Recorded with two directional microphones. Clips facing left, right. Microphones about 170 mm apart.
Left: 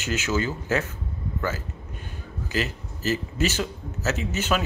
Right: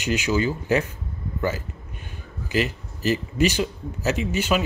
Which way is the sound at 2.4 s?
40° left (ahead or behind).